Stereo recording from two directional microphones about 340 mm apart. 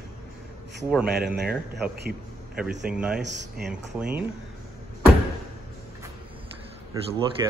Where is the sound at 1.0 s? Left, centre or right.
Right.